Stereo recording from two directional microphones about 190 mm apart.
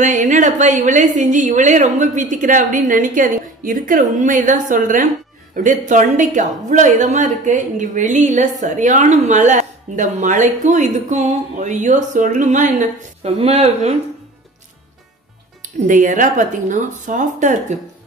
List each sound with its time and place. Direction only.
0.0 s a woman's voice: 40° right (ahead or behind)
15.6 s a woman's voice: 45° right (ahead or behind)